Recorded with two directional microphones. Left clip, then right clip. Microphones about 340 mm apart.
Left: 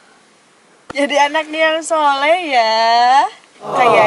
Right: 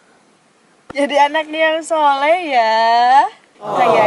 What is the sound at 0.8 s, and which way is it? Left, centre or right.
A woman's voice, centre.